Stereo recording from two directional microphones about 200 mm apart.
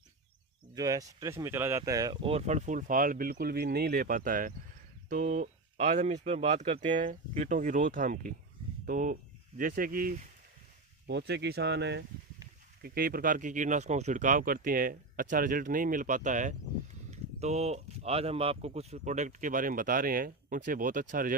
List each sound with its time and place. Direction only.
0.7 s speech: 20° right (ahead or behind); by 10.1 s 45° right (ahead or behind)
11.1 s speech: 60° right (ahead or behind)
12.8 s speech: 50° right (ahead or behind)